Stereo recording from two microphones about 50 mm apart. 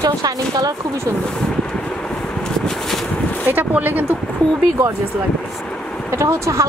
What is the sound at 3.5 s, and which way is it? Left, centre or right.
Speech, right.